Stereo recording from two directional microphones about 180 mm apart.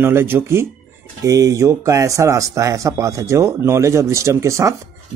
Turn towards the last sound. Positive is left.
turn(degrees=-15)  # may be behind; listen again after turning